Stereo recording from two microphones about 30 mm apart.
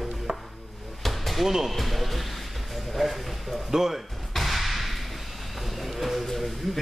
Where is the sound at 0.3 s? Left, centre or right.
Right.